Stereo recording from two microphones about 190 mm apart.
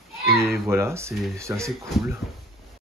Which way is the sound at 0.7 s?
15° right (ahead or behind).